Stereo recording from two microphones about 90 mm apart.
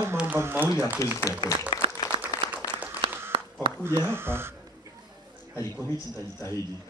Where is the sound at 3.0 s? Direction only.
65° right (ahead or behind).